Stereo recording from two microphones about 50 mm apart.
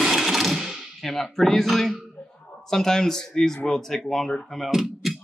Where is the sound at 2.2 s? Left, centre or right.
Left.